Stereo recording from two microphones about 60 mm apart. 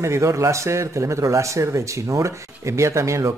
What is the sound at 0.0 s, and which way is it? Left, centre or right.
Speech, right.